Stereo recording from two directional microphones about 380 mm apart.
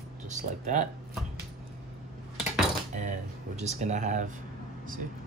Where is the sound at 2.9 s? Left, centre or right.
Centre.